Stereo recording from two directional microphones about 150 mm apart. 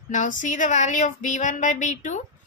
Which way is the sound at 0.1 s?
55° left (ahead or behind).